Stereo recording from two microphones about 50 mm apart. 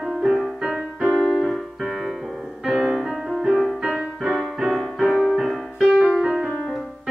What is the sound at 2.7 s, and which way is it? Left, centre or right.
Music, centre.